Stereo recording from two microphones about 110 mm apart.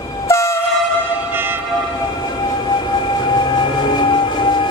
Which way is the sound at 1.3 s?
20° right (ahead or behind).